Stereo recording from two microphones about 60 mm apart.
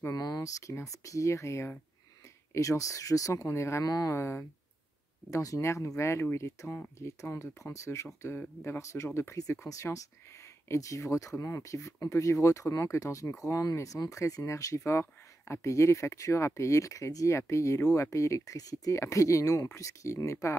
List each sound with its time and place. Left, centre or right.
0.1 s speech: left
3.8 s speech: left
4.1 s speech: left
5.3 s speech: left
5.6 s speech: left